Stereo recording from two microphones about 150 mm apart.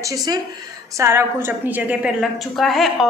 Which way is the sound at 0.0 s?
25° right (ahead or behind).